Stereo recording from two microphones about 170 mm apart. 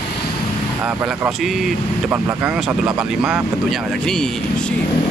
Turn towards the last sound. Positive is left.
turn(degrees=-5)  # may be behind; listen again after turning